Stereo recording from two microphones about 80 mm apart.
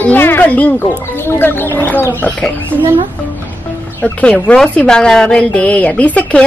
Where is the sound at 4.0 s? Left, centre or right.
Centre.